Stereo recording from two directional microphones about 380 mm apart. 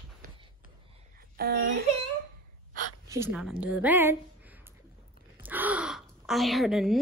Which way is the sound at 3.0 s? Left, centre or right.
Centre.